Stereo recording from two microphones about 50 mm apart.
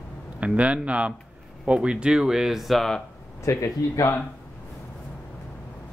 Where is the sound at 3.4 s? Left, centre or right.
Left.